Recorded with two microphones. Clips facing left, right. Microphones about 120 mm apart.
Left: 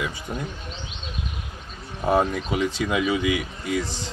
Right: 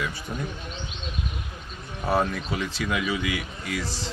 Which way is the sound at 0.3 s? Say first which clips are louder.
Left 2 dB; 20° left (ahead or behind).